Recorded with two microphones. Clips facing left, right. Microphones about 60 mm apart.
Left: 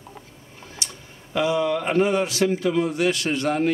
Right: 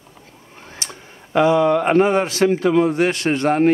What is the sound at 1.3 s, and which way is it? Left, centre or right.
A man's voice, right.